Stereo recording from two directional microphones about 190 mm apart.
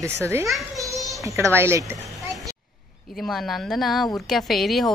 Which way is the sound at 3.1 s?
Centre (ahead or behind).